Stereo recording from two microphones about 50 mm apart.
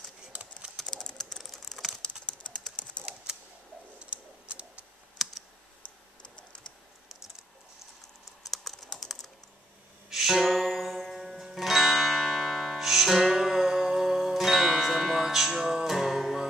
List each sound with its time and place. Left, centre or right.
0.3 s typing: right
0.7 s typing: centre
1.4 s typing: centre
2.8 s typing: centre
4.0 s a sound: right
5.2 s computer keyboard: centre
8.5 s typing: centre
10.0 s music: centre